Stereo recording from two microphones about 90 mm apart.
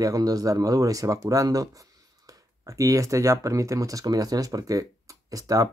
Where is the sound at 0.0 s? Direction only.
40° right (ahead or behind).